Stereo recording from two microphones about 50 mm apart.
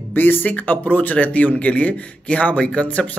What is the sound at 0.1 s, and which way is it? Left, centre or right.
A man's voice, left.